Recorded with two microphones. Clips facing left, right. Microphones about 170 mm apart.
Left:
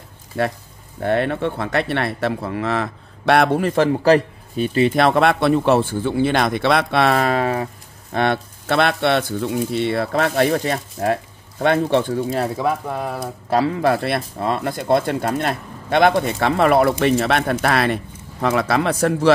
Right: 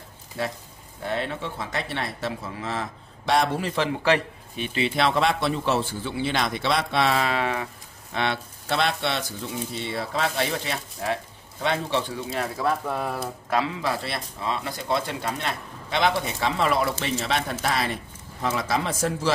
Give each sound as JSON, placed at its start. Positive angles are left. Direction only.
{"t": 0.3, "sound": "a man's voice", "side_deg": 60}
{"t": 12.6, "sound": "speech", "side_deg": 10}
{"t": 13.5, "sound": "speech", "side_deg": 40}
{"t": 13.7, "sound": "speech", "side_deg": 55}